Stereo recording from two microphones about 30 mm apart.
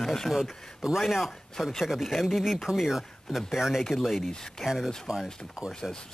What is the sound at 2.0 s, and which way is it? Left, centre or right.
Speech, centre.